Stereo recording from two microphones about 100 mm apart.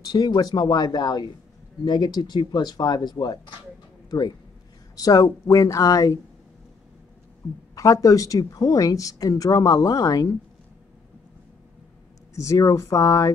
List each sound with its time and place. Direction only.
0.1 s speech: 40° left (ahead or behind)
4.9 s a woman's voice: 40° left (ahead or behind)
7.7 s a woman's voice: 35° left (ahead or behind)
12.4 s a woman's voice: 30° left (ahead or behind)